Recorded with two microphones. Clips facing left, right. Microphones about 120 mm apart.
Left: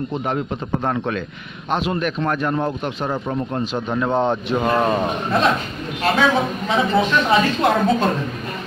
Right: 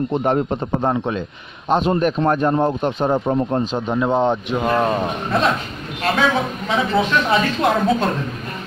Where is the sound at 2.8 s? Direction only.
45° right (ahead or behind).